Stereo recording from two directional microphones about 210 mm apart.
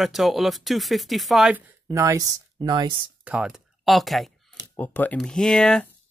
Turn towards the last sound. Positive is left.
turn(degrees=5)  # may be behind; listen again after turning